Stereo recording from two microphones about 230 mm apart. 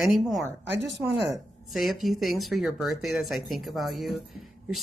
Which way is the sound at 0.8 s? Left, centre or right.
Right.